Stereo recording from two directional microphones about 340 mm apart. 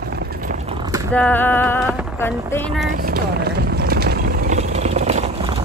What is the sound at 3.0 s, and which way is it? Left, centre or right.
Vehicle, right.